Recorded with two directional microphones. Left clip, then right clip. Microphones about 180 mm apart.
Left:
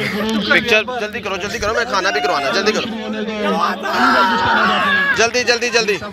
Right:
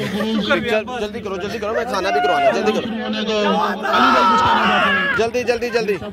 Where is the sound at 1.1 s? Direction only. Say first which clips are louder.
Left 3 dB; 10° right (ahead or behind).